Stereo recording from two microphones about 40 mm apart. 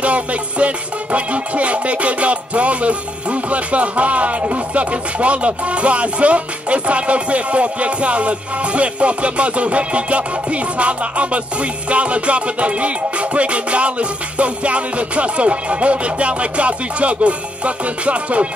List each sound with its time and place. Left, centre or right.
0.0 s music: right